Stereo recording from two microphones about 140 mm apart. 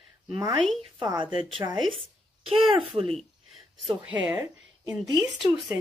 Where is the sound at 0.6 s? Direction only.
Centre (ahead or behind).